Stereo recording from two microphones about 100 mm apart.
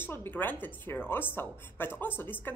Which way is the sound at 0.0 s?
20° left (ahead or behind).